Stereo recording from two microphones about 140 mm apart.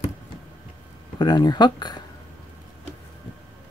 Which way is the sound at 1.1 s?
30° left (ahead or behind).